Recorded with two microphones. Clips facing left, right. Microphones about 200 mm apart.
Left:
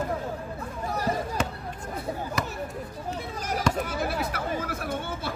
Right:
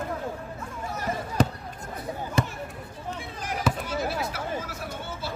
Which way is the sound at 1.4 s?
35° right (ahead or behind).